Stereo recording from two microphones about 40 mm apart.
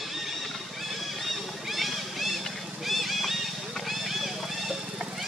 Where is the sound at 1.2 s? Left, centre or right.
Centre.